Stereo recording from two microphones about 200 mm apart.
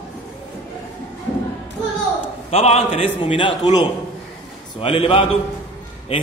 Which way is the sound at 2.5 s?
30° left (ahead or behind).